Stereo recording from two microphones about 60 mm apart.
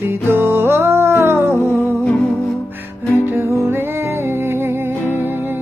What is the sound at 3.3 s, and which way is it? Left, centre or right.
Music, right.